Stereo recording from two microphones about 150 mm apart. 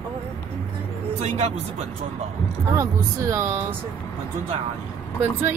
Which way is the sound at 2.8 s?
20° right (ahead or behind).